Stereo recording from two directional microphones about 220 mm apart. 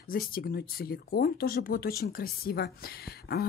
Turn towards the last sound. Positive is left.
turn(degrees=45)  # may be behind; listen again after turning